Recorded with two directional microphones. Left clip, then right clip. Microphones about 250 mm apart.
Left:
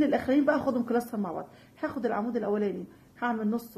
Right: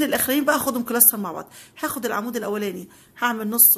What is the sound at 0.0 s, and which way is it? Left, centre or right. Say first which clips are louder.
A woman's voice: right 4 dB; right.